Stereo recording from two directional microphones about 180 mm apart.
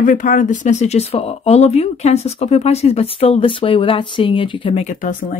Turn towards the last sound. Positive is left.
turn(degrees=45)  # may be behind; listen again after turning